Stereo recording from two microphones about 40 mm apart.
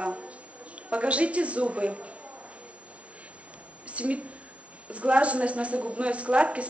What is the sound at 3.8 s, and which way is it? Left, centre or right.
A woman's voice, right.